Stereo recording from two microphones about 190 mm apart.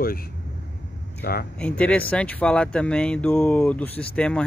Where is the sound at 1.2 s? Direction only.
55° left (ahead or behind).